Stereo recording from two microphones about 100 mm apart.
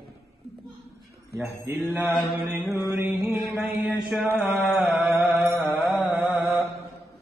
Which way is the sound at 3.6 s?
20° right (ahead or behind).